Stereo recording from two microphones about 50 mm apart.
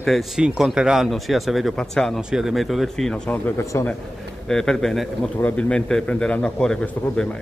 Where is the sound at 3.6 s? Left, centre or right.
Left.